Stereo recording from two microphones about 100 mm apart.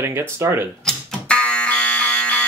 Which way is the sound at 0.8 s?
10° left (ahead or behind).